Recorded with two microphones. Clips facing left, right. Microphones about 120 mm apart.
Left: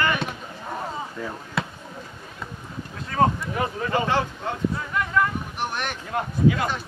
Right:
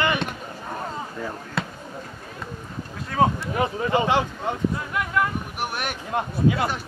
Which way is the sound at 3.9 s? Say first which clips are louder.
Right 2 dB; 20° right (ahead or behind).